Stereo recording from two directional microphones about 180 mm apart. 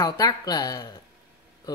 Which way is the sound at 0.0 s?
20° left (ahead or behind).